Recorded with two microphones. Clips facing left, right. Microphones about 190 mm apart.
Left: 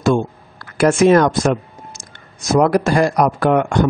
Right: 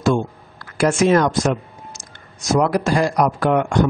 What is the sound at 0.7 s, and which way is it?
A man's voice, 55° left (ahead or behind).